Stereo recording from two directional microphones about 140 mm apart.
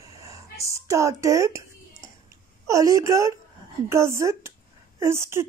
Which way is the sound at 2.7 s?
25° right (ahead or behind).